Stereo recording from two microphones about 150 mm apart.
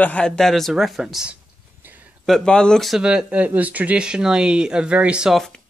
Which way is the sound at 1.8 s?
10° right (ahead or behind).